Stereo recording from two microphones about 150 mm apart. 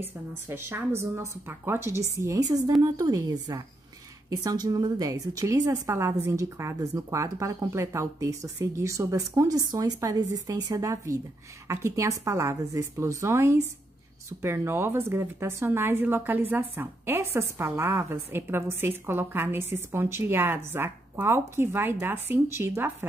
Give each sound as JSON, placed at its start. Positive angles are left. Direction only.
{"t": 0.0, "sound": "a woman's voice", "side_deg": -15}